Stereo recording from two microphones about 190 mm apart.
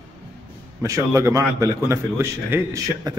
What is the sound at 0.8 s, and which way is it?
A man's voice, 15° right (ahead or behind).